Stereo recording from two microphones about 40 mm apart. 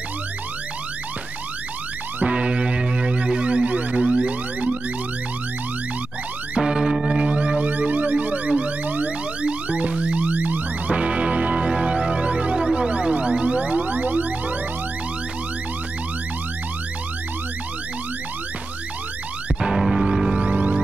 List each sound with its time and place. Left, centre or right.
2.2 s music: right
6.6 s music: centre
7.2 s siren: right
9.4 s music: right
11.0 s music: right
19.6 s music: centre
20.3 s music: right